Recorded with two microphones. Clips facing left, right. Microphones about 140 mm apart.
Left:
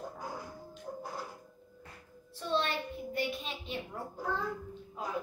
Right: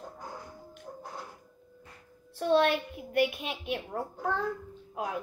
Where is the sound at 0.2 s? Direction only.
5° left (ahead or behind).